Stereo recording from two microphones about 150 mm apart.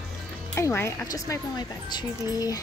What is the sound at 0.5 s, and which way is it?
Speech, 15° left (ahead or behind).